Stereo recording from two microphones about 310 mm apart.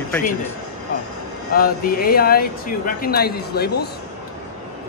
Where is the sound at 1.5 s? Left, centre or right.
Left.